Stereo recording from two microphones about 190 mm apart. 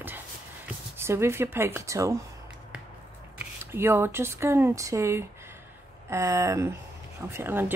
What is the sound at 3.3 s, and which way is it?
Speech, 10° right (ahead or behind).